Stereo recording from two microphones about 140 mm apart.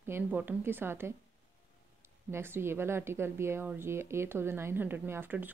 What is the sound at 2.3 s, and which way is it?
Speech, 15° right (ahead or behind).